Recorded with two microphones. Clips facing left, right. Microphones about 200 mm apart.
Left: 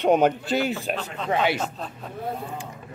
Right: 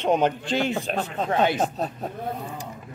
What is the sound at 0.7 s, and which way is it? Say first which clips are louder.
Speech: right 2 dB; 45° right (ahead or behind).